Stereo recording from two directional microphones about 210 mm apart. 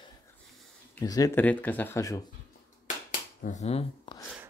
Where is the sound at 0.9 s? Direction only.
15° left (ahead or behind).